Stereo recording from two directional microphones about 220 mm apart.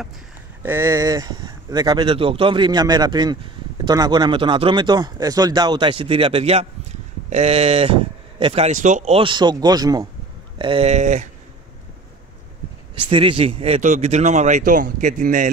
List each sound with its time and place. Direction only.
0.6 s speech: 10° right (ahead or behind); by 11.2 s 30° right (ahead or behind)
12.9 s speech: 25° right (ahead or behind)